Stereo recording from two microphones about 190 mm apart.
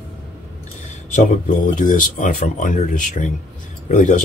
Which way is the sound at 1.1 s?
45° left (ahead or behind).